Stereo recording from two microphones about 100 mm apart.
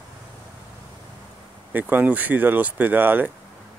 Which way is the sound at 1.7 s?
20° right (ahead or behind).